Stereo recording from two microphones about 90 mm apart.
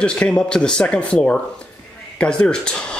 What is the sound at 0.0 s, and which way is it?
Speech, 10° left (ahead or behind).